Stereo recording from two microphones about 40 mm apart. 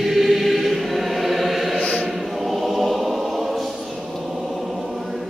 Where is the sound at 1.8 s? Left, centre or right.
Left.